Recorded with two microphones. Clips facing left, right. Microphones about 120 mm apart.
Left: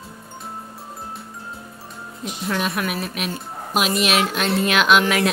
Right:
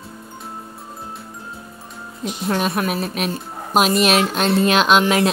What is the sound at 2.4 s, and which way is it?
A woman's voice, 35° right (ahead or behind).